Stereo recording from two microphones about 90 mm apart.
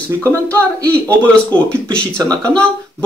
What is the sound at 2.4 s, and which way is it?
Speech, 10° left (ahead or behind).